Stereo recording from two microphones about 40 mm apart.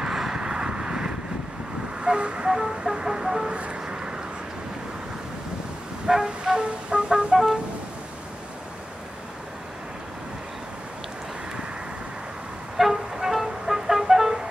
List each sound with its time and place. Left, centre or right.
0.0 s vehicle: centre
2.5 s music: centre
3.8 s duck: centre
6.0 s music: centre
12.7 s music: centre